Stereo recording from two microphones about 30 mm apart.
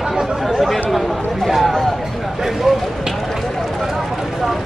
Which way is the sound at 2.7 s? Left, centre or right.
Centre.